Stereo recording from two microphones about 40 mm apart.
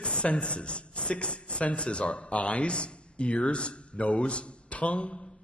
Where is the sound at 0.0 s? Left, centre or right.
Left.